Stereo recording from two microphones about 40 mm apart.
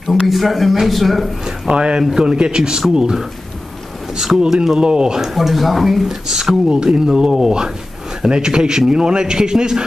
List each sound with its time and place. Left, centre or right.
0.3 s speech: centre
1.4 s a man's voice: right
2.0 s speech: centre
2.3 s a man's voice: right
4.2 s a man's voice: centre
5.3 s a man's voice: centre